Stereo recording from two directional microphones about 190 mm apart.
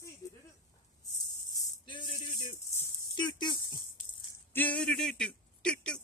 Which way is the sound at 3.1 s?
25° left (ahead or behind).